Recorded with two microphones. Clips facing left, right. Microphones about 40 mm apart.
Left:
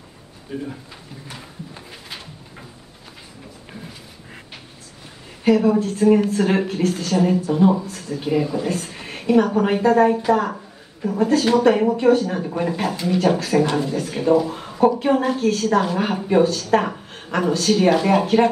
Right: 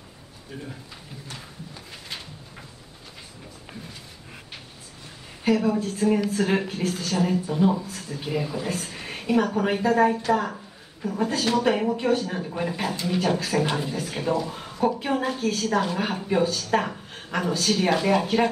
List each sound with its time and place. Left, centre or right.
0.5 s a woman's voice: centre
5.4 s a woman's voice: centre